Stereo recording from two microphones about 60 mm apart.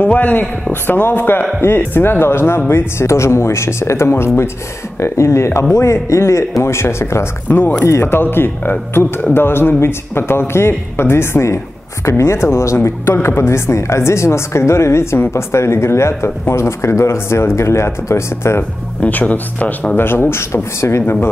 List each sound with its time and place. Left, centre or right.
0.0 s a man's voice: left
7.4 s a man's voice: left
7.8 s speech: left
18.6 s speech: left
20.0 s speech: left